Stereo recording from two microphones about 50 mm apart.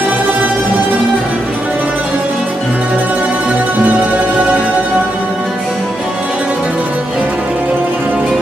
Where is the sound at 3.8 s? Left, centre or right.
Right.